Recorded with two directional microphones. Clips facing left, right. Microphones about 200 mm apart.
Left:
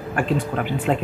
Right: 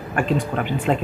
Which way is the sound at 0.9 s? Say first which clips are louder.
Right 1 dB; 5° left (ahead or behind).